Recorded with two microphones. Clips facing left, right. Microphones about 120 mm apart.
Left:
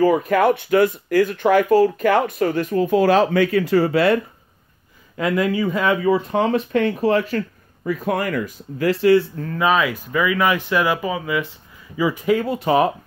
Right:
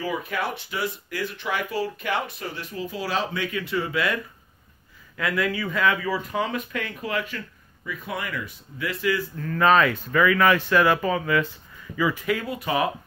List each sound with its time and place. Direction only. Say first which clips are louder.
0.0 s speech: left 12 dB; 45° left (ahead or behind)
5.1 s speech: left 6 dB; 20° left (ahead or behind)
5.9 s speech: left 8 dB; 25° left (ahead or behind)
9.6 s speech: even; 10° left (ahead or behind)
12.3 s speech: left 8 dB; 30° left (ahead or behind)